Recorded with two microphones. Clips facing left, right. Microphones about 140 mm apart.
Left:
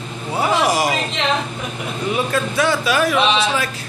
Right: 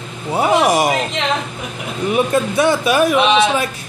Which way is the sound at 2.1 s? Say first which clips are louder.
Right 5 dB; 20° right (ahead or behind).